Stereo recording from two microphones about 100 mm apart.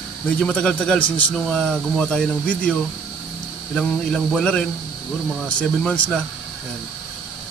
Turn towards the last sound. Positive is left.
turn(degrees=10)  # may be behind; listen again after turning